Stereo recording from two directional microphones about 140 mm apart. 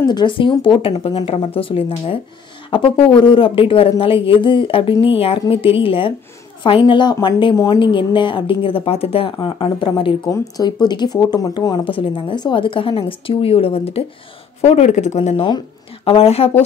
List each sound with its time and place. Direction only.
0.1 s speech: 35° left (ahead or behind)